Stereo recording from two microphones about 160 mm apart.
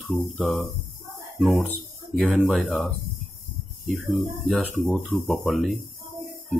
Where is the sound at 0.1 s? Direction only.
5° left (ahead or behind).